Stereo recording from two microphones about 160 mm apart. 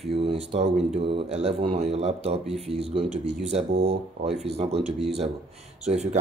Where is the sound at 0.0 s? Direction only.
35° right (ahead or behind).